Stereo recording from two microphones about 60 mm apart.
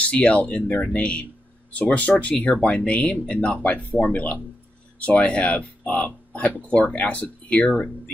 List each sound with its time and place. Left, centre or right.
0.1 s speech: left